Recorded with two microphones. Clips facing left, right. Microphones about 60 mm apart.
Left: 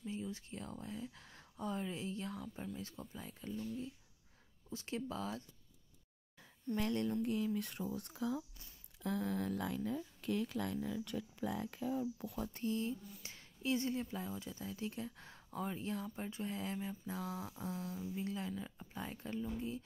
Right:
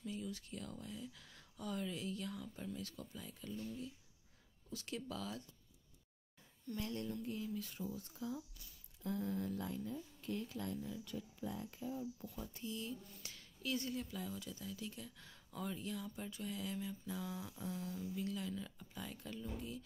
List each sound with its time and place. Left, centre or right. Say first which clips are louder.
0.0 s speech: left 2 dB; left
4.6 s speech: left 4 dB; left
6.7 s speech: left 7 dB; left
13.2 s speech: left 4 dB; left